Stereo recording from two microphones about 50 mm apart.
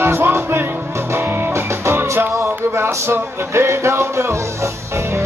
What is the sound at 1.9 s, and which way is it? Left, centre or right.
Music, right.